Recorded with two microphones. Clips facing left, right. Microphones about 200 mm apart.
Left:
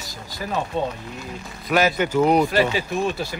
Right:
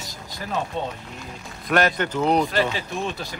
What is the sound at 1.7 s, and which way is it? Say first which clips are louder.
Speech: left 2 dB; 5° left (ahead or behind).